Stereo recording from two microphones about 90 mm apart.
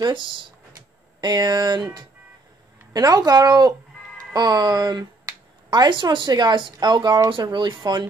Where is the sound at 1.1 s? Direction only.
50° right (ahead or behind).